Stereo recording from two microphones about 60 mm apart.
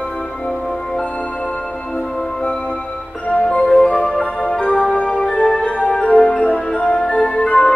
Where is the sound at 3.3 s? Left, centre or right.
Centre.